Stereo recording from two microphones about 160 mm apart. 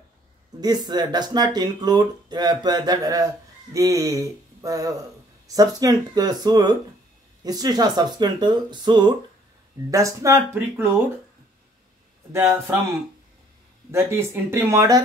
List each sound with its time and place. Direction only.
0.6 s speech: 25° right (ahead or behind)
12.3 s speech: 15° right (ahead or behind)
13.9 s speech: 15° right (ahead or behind)